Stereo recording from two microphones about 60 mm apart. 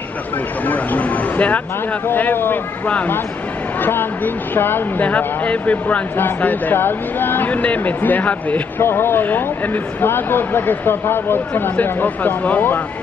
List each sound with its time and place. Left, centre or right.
0.7 s speech: left
3.8 s speech: left
8.8 s speech: left